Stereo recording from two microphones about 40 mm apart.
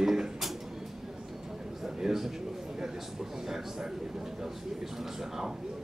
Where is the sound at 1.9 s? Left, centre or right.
Centre.